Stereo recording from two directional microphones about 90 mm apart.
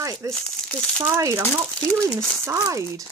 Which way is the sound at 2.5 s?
40° right (ahead or behind).